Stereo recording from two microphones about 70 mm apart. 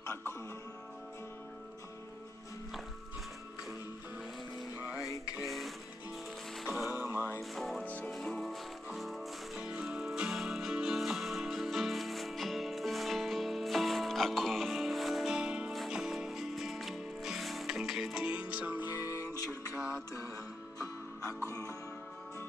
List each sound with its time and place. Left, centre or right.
0.0 s music: left
5.4 s music: centre
7.2 s music: left
7.5 s music: centre
7.8 s music: left
8.1 s music: centre
9.6 s music: centre
15.3 s music: centre; by 19.0 s right
19.0 s music: left
21.5 s music: left